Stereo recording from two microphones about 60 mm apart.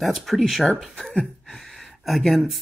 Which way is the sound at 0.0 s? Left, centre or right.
Centre.